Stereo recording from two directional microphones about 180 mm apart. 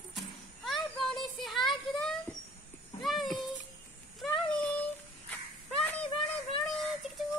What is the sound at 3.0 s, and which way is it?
Speech, centre (ahead or behind).